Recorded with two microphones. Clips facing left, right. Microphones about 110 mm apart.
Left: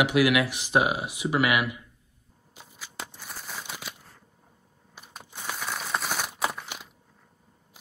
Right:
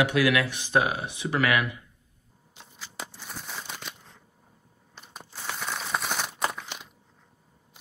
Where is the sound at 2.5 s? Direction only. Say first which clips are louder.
Left 1 dB; 5° left (ahead or behind).